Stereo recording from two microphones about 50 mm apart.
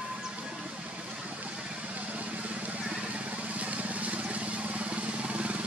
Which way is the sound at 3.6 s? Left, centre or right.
Right.